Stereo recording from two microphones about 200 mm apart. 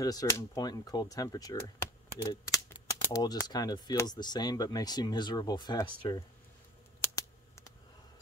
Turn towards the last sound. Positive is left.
turn(degrees=15)  # may be behind; listen again after turning